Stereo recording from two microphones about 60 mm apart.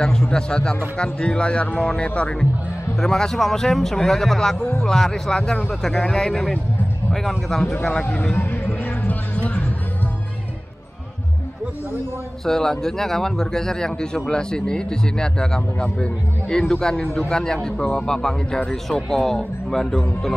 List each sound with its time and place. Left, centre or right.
0.0 s speech: centre
3.0 s speech: centre
5.4 s speech: left
5.7 s speech: centre
8.2 s music: left
12.4 s speech: centre